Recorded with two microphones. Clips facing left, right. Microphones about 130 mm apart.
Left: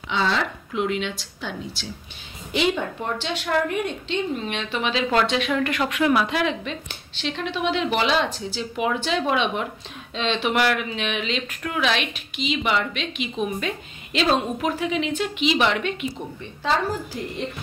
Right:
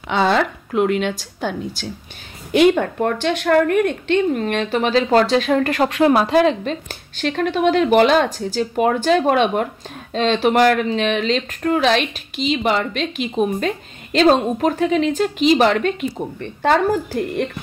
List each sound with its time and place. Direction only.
0.1 s a woman's voice: 55° right (ahead or behind)
16.3 s a woman's voice: 60° right (ahead or behind)